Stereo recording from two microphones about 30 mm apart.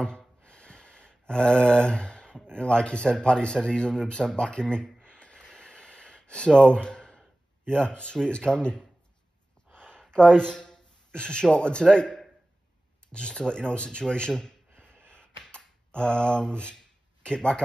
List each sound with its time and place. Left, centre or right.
0.0 s a sound: left
2.3 s speech: left
5.0 s a sound: left
7.6 s speech: left
9.8 s a sound: left
10.1 s speech: left
14.8 s gasp: left
15.4 s computer keyboard: left
17.2 s speech: left